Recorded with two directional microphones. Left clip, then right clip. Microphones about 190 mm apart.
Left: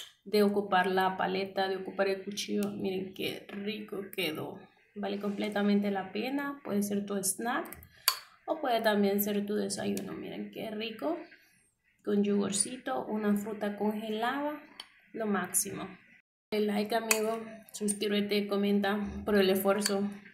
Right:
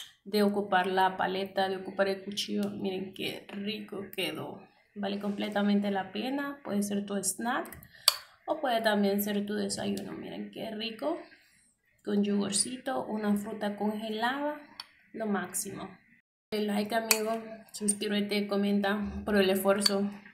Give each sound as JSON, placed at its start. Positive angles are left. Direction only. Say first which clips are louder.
{"t": 0.3, "sound": "a woman's voice", "louder": "even", "side_deg": 5}